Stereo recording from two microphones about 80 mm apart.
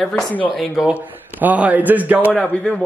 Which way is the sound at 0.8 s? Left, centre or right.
Centre.